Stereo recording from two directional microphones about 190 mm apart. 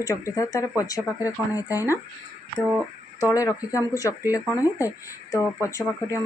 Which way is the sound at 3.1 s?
15° left (ahead or behind).